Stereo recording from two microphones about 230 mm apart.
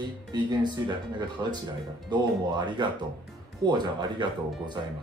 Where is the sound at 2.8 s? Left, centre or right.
Centre.